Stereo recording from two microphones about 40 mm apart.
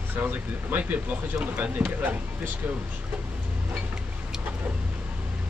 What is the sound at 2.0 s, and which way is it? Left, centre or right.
Speech, right.